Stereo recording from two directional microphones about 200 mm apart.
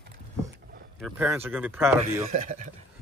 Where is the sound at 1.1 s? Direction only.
10° right (ahead or behind).